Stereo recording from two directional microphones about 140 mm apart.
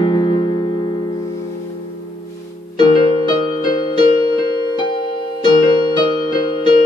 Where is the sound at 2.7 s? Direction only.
30° left (ahead or behind).